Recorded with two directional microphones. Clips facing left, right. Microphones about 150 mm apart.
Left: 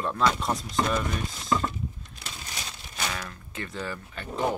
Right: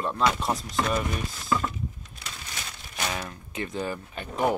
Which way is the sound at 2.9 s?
25° right (ahead or behind).